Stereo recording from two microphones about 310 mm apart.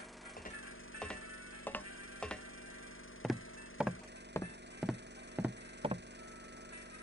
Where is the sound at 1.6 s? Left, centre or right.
Centre.